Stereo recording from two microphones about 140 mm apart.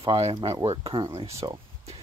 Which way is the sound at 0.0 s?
40° right (ahead or behind).